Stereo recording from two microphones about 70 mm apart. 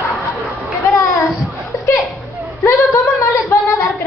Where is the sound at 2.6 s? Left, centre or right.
Left.